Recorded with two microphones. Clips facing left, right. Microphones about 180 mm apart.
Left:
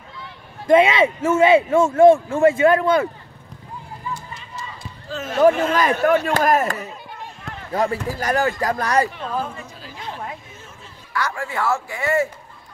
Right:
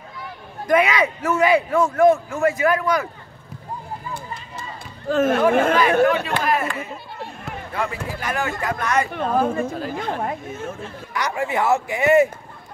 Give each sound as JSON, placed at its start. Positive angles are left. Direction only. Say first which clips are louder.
{"t": 0.7, "sound": "a man's voice", "louder": "left 4 dB", "side_deg": 25}
{"t": 4.1, "sound": "a sound", "louder": "even", "side_deg": -55}
{"t": 5.0, "sound": "speech", "louder": "left 1 dB", "side_deg": -55}
{"t": 6.0, "sound": "speech", "louder": "left 3 dB", "side_deg": 50}
{"t": 9.1, "sound": "speech", "louder": "right 7 dB", "side_deg": -50}
{"t": 11.1, "sound": "a man's voice", "louder": "right 2 dB", "side_deg": -20}